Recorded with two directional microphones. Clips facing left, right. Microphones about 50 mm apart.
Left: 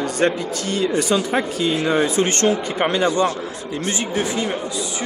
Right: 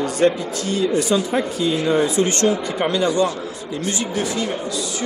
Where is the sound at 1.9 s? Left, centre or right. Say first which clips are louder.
Right 1 dB; left.